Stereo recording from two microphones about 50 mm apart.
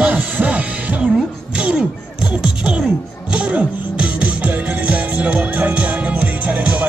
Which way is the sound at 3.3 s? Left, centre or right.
Right.